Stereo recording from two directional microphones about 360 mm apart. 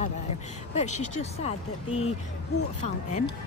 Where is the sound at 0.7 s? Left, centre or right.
Centre.